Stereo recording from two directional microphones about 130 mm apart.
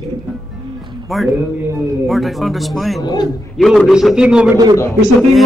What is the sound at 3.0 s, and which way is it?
Speech, 30° left (ahead or behind).